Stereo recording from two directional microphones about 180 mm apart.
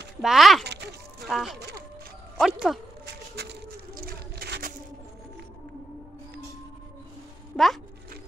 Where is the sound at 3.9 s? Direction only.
55° right (ahead or behind).